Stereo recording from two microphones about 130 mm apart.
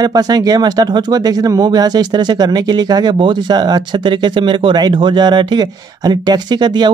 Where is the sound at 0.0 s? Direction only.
30° right (ahead or behind).